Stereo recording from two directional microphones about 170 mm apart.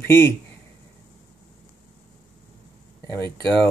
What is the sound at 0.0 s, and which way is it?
Speech, 15° left (ahead or behind).